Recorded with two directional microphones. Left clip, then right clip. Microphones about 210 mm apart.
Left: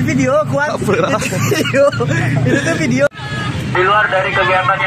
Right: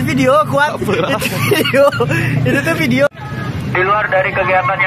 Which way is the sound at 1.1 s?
15° right (ahead or behind).